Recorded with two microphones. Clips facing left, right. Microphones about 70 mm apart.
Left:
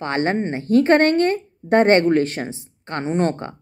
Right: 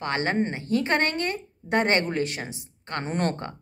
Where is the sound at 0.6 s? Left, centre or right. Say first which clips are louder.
Left 13 dB; left.